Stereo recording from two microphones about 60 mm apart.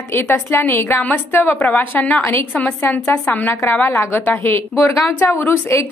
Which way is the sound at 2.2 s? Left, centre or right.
Left.